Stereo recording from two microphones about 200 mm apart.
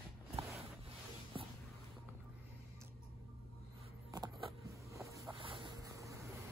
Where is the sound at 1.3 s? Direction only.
25° right (ahead or behind).